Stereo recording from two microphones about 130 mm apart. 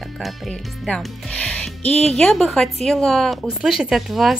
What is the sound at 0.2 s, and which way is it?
Speech, 5° left (ahead or behind).